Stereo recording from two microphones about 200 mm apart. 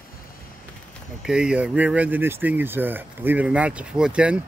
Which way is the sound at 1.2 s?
5° right (ahead or behind).